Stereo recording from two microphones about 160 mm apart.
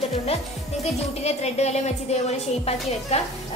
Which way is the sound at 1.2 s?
45° left (ahead or behind).